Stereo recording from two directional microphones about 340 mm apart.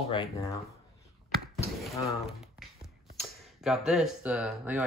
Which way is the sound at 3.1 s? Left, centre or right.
Centre.